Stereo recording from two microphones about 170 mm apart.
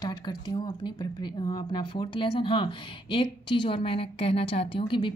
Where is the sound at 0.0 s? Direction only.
25° left (ahead or behind).